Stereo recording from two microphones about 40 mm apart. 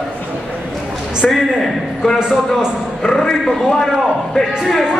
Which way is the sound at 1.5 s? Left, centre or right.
Centre.